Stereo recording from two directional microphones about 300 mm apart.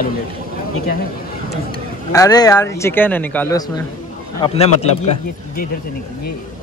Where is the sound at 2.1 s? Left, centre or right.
Centre.